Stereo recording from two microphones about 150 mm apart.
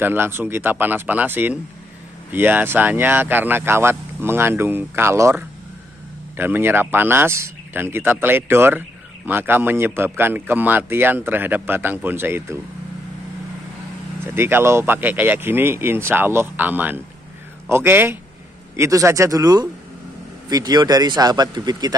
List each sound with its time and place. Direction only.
0.0 s speech: 15° right (ahead or behind)
14.2 s speech: 15° right (ahead or behind)